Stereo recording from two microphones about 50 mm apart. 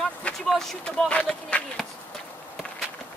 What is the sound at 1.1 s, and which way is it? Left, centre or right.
Speech, left.